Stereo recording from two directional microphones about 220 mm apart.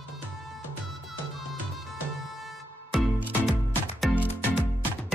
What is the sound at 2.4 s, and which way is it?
Music, centre (ahead or behind).